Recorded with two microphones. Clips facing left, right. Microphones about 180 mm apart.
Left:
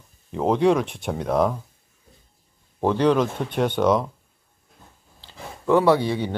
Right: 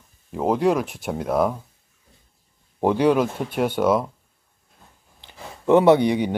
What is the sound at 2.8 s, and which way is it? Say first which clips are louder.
Speech: right 1 dB; 10° right (ahead or behind).